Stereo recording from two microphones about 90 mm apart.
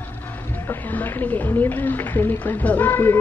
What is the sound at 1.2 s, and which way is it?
A woman's voice, 20° left (ahead or behind).